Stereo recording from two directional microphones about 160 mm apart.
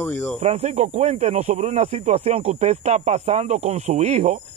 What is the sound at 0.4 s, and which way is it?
Speech, 40° right (ahead or behind).